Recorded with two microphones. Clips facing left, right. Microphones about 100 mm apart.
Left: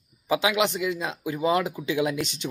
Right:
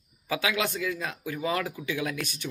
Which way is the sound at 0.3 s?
20° left (ahead or behind).